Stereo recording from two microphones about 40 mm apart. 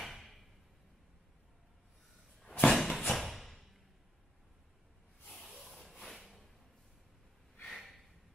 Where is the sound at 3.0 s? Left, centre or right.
Centre.